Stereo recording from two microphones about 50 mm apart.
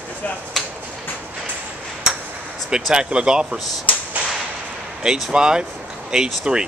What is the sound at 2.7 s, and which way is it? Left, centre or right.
Speech, centre.